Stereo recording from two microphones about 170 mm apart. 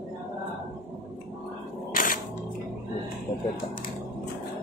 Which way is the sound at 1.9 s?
55° left (ahead or behind).